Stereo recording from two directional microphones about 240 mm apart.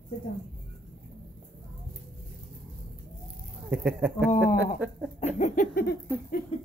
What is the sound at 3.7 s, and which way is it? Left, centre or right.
Speech, centre.